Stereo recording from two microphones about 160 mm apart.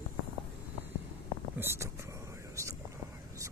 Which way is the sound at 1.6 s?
15° right (ahead or behind).